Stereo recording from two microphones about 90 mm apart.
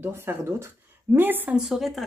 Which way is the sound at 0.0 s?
25° right (ahead or behind).